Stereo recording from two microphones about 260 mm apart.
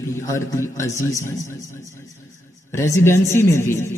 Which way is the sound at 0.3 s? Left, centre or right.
Centre.